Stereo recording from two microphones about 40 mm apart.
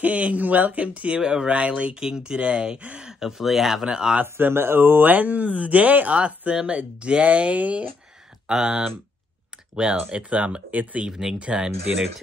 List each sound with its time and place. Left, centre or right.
0.0 s speech: right
1.2 s speech: centre
2.0 s speech: centre
3.1 s speech: centre
3.9 s speech: right
4.2 s speech: right
6.5 s speech: right
6.8 s speech: right
8.5 s speech: centre
9.9 s speech: right
10.7 s speech: right
11.1 s speech: centre
11.3 s speech: right